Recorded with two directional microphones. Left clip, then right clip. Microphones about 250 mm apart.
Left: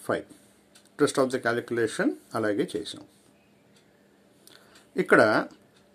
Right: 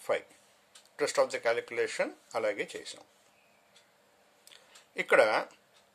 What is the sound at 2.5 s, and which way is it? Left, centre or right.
Speech, centre.